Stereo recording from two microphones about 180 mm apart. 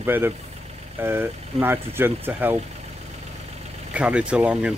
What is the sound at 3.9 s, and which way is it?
Speech, 5° right (ahead or behind).